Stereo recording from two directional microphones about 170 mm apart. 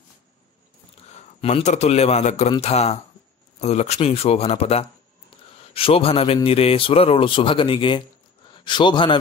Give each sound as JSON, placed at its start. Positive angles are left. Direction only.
{"t": 1.1, "sound": "a man's voice", "side_deg": 40}
{"t": 5.3, "sound": "a sound", "side_deg": 30}
{"t": 5.7, "sound": "a man's voice", "side_deg": 35}